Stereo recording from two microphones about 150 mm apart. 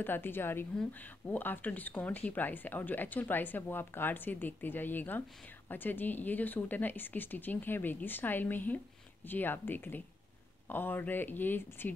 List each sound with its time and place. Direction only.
0.0 s speech: 15° left (ahead or behind)